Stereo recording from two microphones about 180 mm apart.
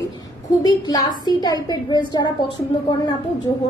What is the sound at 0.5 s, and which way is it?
A woman's voice, 20° left (ahead or behind).